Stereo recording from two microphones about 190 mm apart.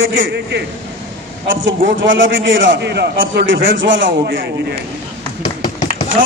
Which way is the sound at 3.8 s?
80° right.